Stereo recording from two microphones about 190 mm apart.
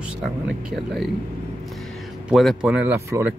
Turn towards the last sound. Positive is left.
turn(degrees=-10)  # may be behind; listen again after turning